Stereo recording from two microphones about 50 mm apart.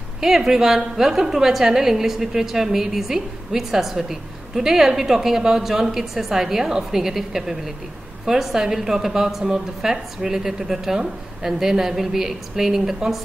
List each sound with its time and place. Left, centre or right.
0.2 s a woman's voice: centre